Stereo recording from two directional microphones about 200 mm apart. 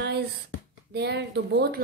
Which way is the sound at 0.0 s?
55° right (ahead or behind).